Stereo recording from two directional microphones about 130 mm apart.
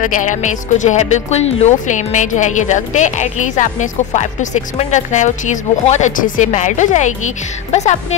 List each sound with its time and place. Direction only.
0.0 s a woman's voice: 80° left; by 8.2 s 60° left (ahead or behind)